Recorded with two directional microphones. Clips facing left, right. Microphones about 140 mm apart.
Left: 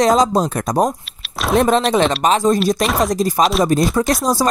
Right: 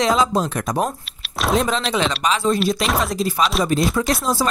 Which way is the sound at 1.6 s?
50° left (ahead or behind).